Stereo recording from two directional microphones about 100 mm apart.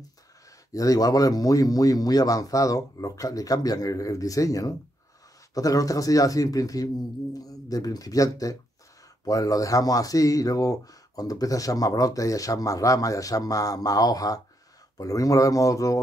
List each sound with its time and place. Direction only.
0.7 s speech: 35° left (ahead or behind)